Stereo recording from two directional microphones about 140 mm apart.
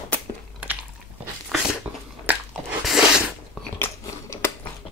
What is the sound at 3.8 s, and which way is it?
Biting, 20° left (ahead or behind).